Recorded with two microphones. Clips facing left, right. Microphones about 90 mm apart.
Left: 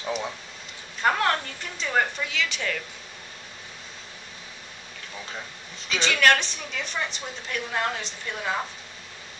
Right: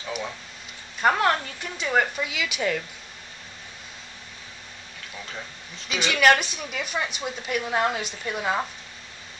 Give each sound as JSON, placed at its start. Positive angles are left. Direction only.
{"t": 1.0, "sound": "a woman's voice", "side_deg": -5}
{"t": 5.9, "sound": "a woman's voice", "side_deg": -10}